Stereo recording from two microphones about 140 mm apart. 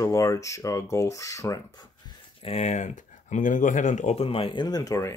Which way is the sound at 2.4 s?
50° left (ahead or behind).